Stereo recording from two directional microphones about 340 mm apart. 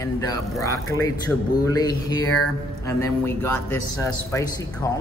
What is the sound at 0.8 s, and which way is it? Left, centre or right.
Speech, left.